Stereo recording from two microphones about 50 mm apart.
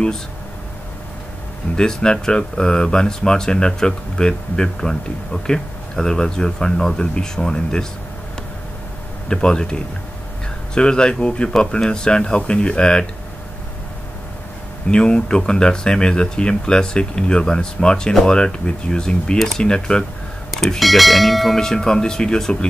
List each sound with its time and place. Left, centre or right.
1.8 s speech: centre
9.3 s speech: centre
14.9 s speech: centre
20.5 s speech: centre